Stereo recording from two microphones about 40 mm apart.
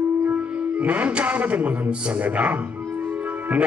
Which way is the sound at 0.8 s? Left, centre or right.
Right.